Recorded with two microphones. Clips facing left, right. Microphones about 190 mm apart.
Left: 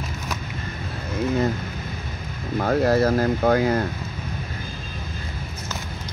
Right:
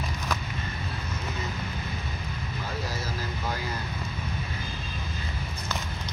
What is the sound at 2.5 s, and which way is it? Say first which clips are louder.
Speech: left 17 dB; 60° left (ahead or behind).